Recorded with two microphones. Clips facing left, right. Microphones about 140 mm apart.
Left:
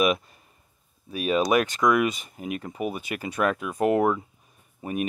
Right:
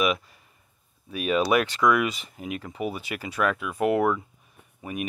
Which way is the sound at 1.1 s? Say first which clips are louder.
Left 1 dB; 35° left (ahead or behind).